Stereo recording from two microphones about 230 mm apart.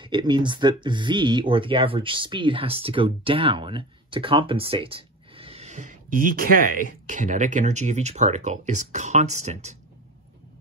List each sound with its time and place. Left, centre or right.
0.0 s speech: centre